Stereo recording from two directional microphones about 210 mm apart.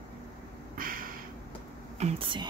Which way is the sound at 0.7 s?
40° right (ahead or behind).